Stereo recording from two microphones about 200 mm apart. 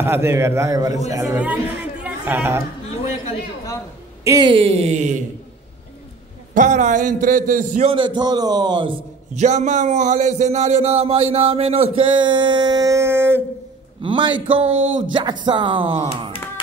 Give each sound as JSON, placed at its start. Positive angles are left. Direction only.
{"t": 0.0, "sound": "a man's voice", "side_deg": -10}
{"t": 4.2, "sound": "speech", "side_deg": -20}
{"t": 6.5, "sound": "a man's voice", "side_deg": -40}
{"t": 7.9, "sound": "speech", "side_deg": -20}
{"t": 9.4, "sound": "a man's voice", "side_deg": -35}
{"t": 14.0, "sound": "speech", "side_deg": -25}